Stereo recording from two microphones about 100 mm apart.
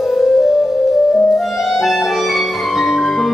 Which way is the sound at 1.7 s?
Centre (ahead or behind).